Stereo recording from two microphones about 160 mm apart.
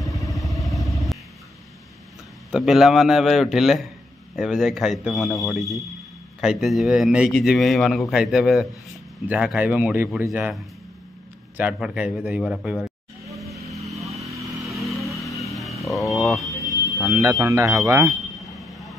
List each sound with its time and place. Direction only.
0.3 s vehicle: centre (ahead or behind)
2.5 s a man's voice: centre (ahead or behind)
11.5 s a man's voice: 5° right (ahead or behind)
13.3 s vehicle: centre (ahead or behind)
13.6 s vehicle: 20° right (ahead or behind)
14.2 s motorcycle: 20° right (ahead or behind)
14.7 s vehicle: centre (ahead or behind)
17.1 s speech: 20° right (ahead or behind)
18.1 s a sound: centre (ahead or behind)